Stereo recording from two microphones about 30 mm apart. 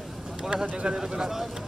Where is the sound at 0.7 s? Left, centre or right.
Right.